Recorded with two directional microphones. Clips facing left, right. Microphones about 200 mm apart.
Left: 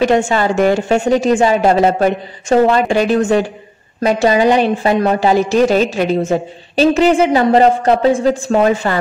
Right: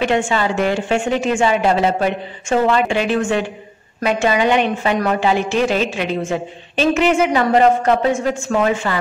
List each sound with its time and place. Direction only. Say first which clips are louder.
0.0 s a woman's voice: left 4 dB; 40° left (ahead or behind)